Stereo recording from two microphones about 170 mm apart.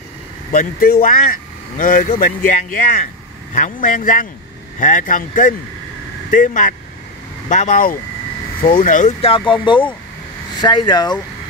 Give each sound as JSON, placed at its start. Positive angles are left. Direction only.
{"t": 0.5, "sound": "speech", "side_deg": 55}
{"t": 9.3, "sound": "speech", "side_deg": 30}